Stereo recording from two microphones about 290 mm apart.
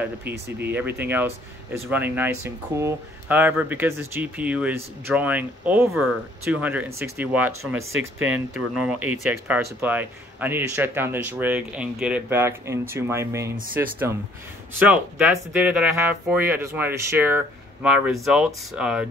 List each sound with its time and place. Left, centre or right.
0.3 s speech: right
0.7 s speech: centre
7.7 s speech: right
8.3 s speech: centre
15.5 s speech: centre